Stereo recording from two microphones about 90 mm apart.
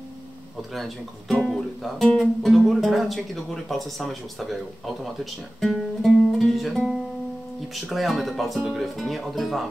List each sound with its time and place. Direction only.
1.3 s speech: 5° left (ahead or behind)
5.6 s music: 5° left (ahead or behind)
7.7 s speech: centre (ahead or behind)